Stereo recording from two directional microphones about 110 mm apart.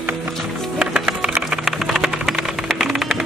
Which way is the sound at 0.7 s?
5° right (ahead or behind).